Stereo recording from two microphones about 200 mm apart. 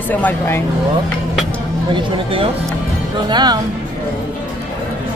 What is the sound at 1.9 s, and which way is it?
Speech, 25° right (ahead or behind).